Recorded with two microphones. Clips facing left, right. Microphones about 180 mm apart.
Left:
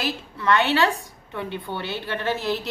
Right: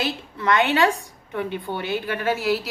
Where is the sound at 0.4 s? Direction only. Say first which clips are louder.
Right 1 dB; 15° right (ahead or behind).